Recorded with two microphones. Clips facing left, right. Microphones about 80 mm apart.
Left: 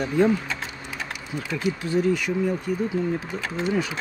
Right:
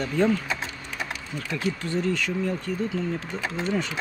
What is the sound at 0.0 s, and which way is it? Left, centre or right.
Speech, centre.